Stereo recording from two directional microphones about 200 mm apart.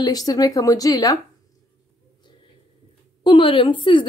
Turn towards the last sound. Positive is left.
turn(degrees=25)  # may be behind; listen again after turning